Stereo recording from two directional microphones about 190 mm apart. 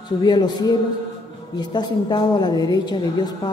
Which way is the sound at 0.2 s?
20° left (ahead or behind).